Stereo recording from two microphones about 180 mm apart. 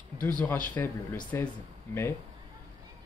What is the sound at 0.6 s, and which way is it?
Speech, 10° left (ahead or behind).